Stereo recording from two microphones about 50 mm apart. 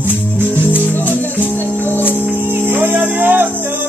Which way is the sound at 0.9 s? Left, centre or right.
Left.